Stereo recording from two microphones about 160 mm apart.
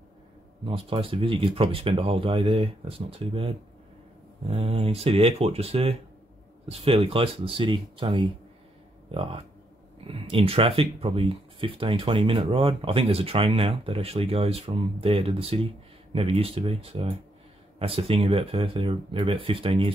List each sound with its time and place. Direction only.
0.7 s speech: 35° right (ahead or behind)